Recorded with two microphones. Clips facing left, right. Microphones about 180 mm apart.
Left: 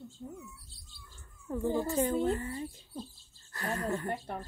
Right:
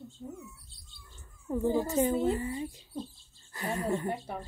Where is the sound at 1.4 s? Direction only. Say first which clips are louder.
Right 3 dB; 20° right (ahead or behind).